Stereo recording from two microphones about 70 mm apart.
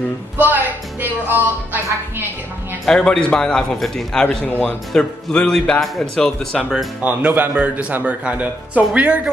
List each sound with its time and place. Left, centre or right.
1.0 s music: right
2.8 s speech: centre
7.0 s speech: centre